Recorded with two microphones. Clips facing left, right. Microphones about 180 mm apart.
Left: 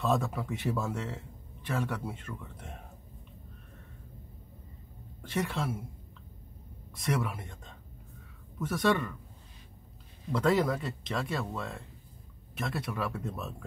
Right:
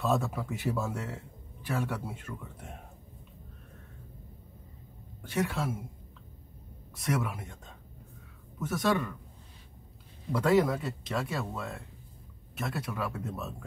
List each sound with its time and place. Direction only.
0.0 s speech: centre (ahead or behind)
5.3 s speech: 5° right (ahead or behind)
7.0 s speech: centre (ahead or behind)
8.5 s speech: 5° right (ahead or behind)
10.3 s speech: 5° right (ahead or behind)